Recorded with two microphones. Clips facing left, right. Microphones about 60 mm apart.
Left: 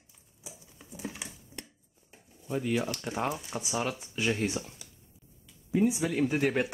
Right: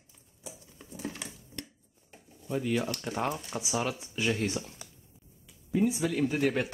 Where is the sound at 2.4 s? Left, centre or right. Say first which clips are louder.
Even; centre.